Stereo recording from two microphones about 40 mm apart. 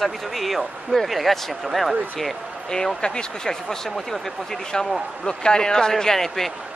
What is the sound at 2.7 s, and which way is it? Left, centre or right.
Speech, centre.